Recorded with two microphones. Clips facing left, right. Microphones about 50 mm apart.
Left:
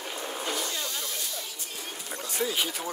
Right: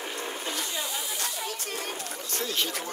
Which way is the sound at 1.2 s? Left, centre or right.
Right.